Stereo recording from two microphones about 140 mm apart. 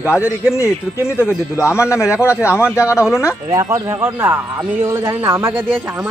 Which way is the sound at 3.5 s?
25° right (ahead or behind).